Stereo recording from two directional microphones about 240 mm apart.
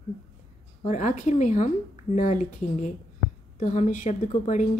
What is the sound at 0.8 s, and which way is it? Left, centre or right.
A woman's voice, left.